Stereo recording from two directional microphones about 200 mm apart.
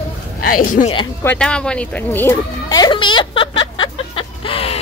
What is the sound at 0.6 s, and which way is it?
Speech, 45° left (ahead or behind).